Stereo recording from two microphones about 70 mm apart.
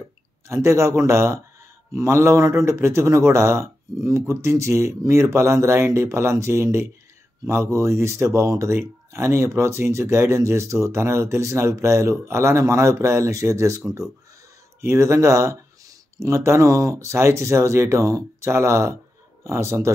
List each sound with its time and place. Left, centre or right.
0.5 s a man's voice: right